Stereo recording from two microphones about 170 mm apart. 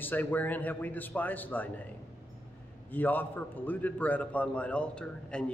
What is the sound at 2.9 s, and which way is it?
A man's voice, 10° left (ahead or behind).